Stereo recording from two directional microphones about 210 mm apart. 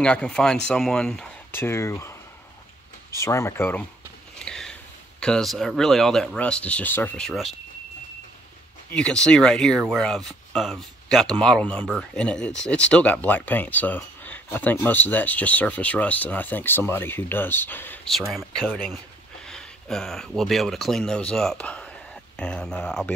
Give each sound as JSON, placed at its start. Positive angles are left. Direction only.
{"t": 0.0, "sound": "speech", "side_deg": 5}
{"t": 3.2, "sound": "speech", "side_deg": 15}
{"t": 4.4, "sound": "a sound", "side_deg": 5}
{"t": 5.2, "sound": "speech", "side_deg": 0}
{"t": 8.9, "sound": "speech", "side_deg": 5}